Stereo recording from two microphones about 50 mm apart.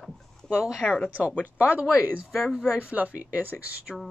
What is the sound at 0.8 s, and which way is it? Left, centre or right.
Speech, left.